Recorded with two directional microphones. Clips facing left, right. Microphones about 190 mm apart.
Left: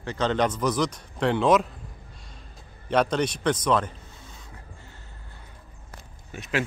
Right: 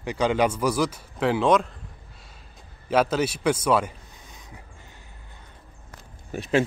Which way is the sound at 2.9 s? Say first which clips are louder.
Right 1 dB; 5° right (ahead or behind).